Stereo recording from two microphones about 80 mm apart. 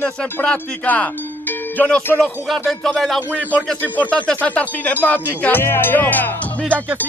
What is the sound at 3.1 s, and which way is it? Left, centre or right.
Music, centre.